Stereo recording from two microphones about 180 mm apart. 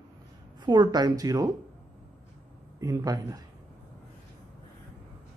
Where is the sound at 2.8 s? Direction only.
20° right (ahead or behind).